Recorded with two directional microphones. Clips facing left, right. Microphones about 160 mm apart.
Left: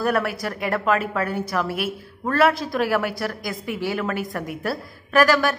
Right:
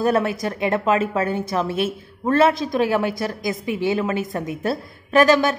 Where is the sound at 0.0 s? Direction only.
20° right (ahead or behind).